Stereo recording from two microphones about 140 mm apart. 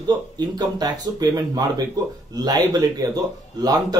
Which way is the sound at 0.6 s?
30° right (ahead or behind).